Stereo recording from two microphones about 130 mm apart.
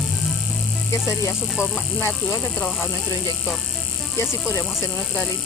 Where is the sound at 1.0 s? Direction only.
20° left (ahead or behind).